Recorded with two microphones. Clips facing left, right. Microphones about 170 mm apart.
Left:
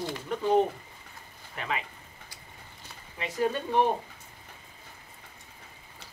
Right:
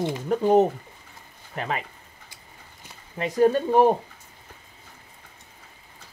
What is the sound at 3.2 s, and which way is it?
Speech, 40° right (ahead or behind).